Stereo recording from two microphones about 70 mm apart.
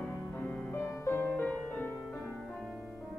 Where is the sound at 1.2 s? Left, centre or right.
Left.